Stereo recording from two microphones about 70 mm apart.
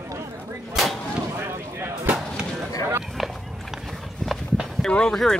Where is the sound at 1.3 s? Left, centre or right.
Right.